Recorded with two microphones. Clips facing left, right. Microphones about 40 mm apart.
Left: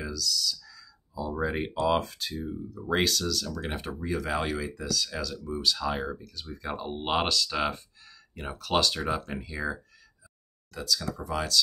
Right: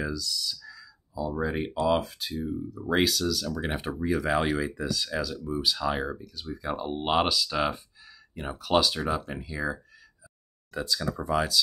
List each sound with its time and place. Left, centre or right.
0.0 s clicking: right
1.1 s speech: centre
10.7 s speech: right